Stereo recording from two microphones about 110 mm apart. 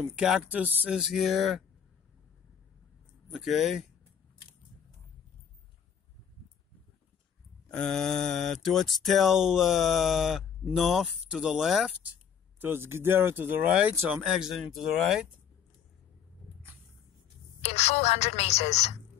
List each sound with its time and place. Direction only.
0.2 s speech: 5° right (ahead or behind)
3.3 s speech: centre (ahead or behind)
7.7 s speech: 5° left (ahead or behind)
12.5 s speech: 20° right (ahead or behind); by 15.2 s 5° right (ahead or behind)
17.6 s a woman's voice: 80° left